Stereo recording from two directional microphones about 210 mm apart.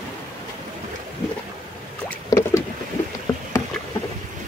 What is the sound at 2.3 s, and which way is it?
Boat, 15° left (ahead or behind).